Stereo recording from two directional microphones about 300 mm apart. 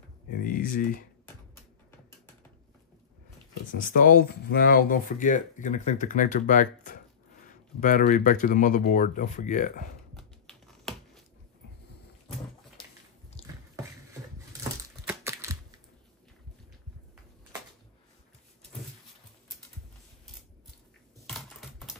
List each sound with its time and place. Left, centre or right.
0.4 s speech: left
3.7 s speech: left
10.1 s a sound: centre
13.4 s a sound: centre
15.0 s typing: centre
21.3 s typing: centre